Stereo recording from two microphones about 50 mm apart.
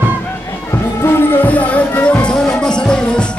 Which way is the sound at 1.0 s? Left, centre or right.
Left.